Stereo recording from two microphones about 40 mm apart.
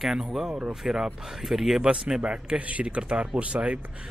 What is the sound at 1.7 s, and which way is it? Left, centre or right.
Speech, centre.